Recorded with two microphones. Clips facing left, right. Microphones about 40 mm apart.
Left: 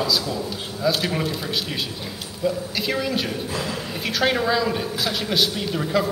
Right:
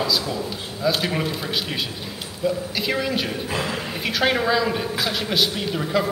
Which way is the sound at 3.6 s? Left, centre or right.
Right.